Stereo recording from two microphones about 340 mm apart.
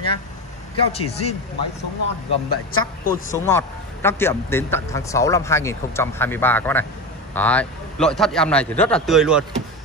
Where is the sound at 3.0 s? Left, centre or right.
Left.